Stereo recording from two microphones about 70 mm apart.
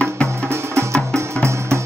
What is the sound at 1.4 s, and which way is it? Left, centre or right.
Music, right.